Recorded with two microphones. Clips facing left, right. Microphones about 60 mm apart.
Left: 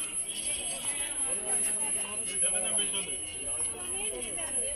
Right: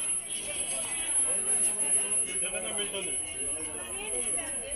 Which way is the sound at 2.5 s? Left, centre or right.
Centre.